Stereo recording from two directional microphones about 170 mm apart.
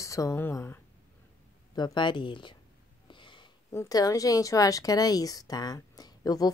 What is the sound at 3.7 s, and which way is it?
Speech, 20° left (ahead or behind).